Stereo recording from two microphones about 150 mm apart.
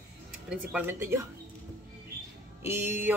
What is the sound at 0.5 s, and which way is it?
Speech, 10° right (ahead or behind).